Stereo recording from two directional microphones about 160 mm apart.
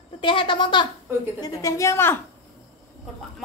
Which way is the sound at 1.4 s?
20° left (ahead or behind).